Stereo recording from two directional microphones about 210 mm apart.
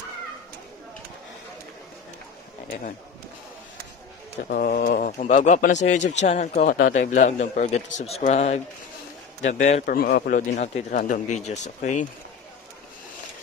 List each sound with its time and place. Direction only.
4.5 s speech: 45° left (ahead or behind)